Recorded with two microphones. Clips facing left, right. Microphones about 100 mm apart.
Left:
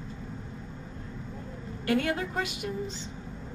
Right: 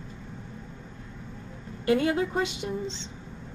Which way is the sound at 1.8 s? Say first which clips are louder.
Right 4 dB; 25° right (ahead or behind).